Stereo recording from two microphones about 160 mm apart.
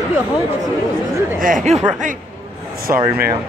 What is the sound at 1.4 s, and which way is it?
Speech, 50° right (ahead or behind).